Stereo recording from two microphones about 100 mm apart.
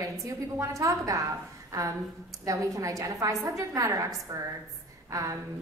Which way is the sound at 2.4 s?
35° right (ahead or behind).